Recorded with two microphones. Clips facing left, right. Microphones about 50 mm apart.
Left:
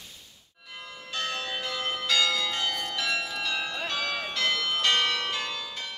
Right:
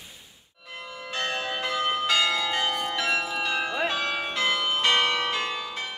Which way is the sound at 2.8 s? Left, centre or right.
Centre.